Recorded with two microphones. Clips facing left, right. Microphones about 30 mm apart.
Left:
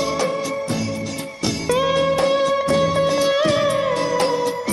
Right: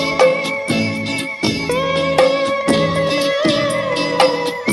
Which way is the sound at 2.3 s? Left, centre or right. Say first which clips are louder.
Right 2 dB; right.